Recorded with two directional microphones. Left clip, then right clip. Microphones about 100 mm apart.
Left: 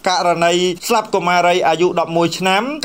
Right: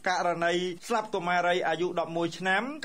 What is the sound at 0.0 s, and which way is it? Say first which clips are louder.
A man's voice: left 13 dB; 20° left (ahead or behind).